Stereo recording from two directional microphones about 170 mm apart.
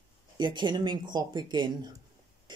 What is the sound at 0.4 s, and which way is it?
Speech, 25° right (ahead or behind).